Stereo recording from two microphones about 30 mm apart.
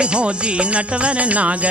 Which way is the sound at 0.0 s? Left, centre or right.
Right.